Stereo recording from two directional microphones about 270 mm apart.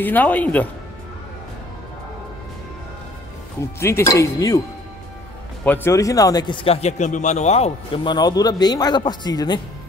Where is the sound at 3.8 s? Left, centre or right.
Centre.